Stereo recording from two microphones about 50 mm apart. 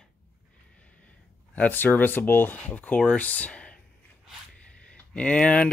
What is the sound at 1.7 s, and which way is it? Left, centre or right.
Speech, left.